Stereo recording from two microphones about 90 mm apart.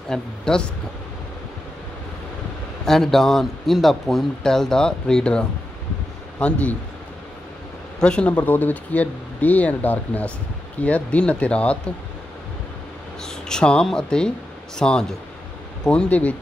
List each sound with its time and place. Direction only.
0.1 s speech: 10° left (ahead or behind)
2.8 s a man's voice: 5° left (ahead or behind)
8.0 s speech: 10° left (ahead or behind)
13.2 s speech: 10° left (ahead or behind)